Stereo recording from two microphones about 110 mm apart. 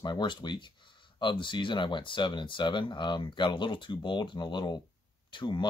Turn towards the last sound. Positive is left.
turn(degrees=45)  # may be behind; listen again after turning